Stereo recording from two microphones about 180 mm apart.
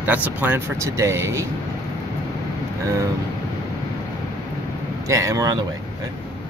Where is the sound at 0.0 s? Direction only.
10° right (ahead or behind).